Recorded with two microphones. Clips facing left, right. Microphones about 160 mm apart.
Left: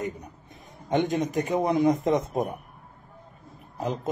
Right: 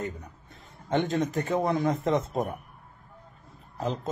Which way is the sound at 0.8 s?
15° left (ahead or behind).